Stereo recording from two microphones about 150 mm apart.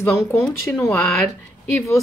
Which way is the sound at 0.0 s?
15° left (ahead or behind).